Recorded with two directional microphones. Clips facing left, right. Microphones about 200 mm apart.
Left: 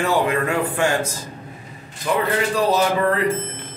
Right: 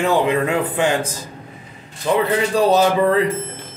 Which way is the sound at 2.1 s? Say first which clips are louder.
Right 3 dB; 25° right (ahead or behind).